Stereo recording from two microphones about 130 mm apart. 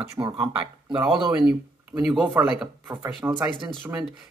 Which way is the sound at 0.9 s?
5° right (ahead or behind).